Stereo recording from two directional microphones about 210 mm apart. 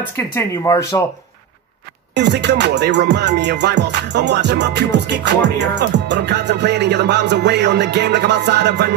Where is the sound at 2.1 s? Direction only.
55° right (ahead or behind).